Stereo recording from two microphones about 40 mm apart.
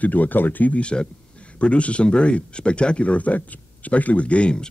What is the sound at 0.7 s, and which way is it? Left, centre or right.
Speech, left.